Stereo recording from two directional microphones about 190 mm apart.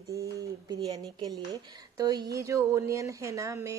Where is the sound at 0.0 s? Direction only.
15° right (ahead or behind).